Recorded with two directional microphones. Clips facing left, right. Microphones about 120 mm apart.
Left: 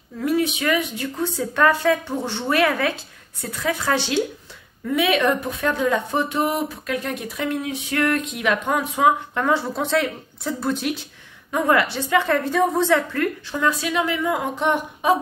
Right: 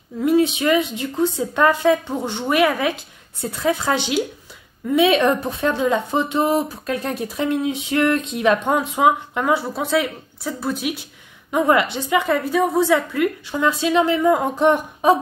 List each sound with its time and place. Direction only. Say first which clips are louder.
0.2 s speech: right 4 dB; 25° right (ahead or behind)
3.3 s speech: right 4 dB; 25° right (ahead or behind); by 11.0 s 5° right (ahead or behind)
11.5 s a woman's voice: right 2 dB; 20° right (ahead or behind)
14.2 s speech: right 6 dB; 40° right (ahead or behind)